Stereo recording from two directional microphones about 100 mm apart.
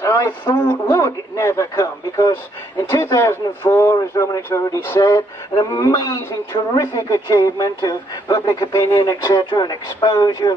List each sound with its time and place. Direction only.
0.0 s speech: 30° left (ahead or behind)